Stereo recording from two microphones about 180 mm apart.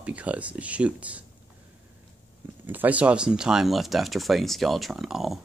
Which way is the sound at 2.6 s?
10° right (ahead or behind).